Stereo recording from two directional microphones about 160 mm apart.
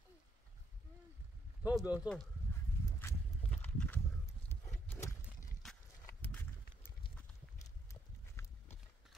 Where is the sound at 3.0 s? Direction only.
10° left (ahead or behind).